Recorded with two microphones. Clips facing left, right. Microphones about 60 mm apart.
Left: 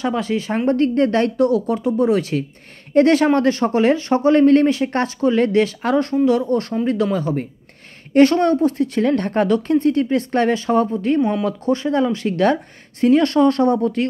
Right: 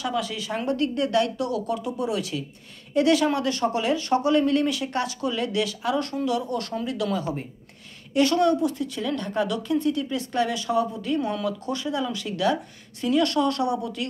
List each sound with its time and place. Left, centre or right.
0.0 s speech: left
5.9 s speech: left